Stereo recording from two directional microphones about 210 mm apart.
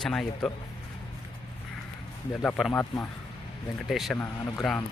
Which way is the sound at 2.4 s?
5° left (ahead or behind).